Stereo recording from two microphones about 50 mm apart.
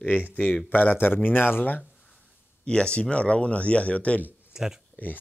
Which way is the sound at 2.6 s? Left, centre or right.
Centre.